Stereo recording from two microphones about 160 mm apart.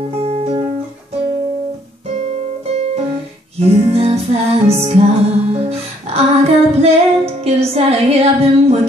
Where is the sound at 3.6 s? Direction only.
40° right (ahead or behind).